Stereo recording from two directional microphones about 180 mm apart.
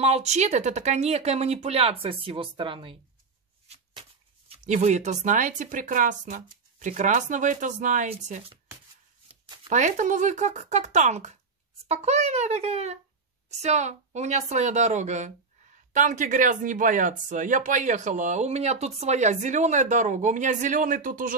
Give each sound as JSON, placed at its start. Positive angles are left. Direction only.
{"t": 0.0, "sound": "speech", "side_deg": -35}
{"t": 9.7, "sound": "speech", "side_deg": -45}